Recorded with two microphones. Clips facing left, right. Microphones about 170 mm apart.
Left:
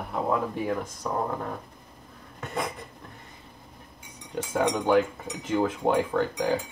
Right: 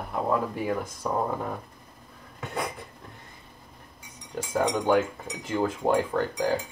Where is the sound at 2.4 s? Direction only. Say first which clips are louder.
Left 1 dB; centre (ahead or behind).